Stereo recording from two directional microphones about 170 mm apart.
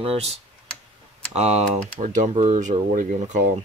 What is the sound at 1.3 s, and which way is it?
Speech, 40° right (ahead or behind).